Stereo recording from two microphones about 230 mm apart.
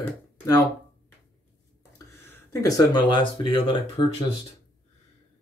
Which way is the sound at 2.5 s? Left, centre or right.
Centre.